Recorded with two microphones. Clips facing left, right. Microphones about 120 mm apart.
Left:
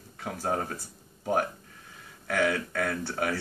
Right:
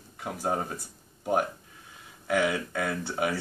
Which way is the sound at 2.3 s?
15° right (ahead or behind).